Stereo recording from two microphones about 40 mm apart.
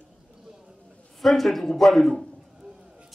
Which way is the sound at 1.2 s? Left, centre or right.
Centre.